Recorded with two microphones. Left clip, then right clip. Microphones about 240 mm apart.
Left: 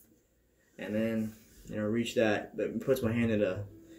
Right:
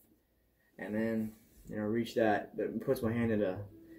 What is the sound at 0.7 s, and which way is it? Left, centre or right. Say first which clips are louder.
Speech: left 3 dB; centre.